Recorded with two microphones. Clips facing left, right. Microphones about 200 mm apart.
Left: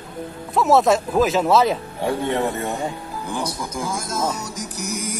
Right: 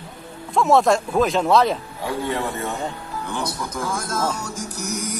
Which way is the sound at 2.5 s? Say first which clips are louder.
Left 2 dB; 40° left (ahead or behind).